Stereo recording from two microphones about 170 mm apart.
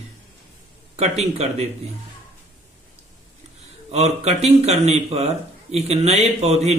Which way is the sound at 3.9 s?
40° right (ahead or behind).